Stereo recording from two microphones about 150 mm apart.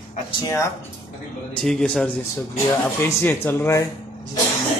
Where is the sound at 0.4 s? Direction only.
20° left (ahead or behind).